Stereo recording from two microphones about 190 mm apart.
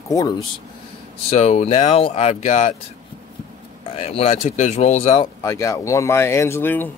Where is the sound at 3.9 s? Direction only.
30° left (ahead or behind).